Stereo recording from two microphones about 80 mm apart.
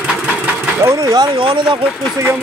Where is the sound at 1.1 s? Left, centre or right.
Right.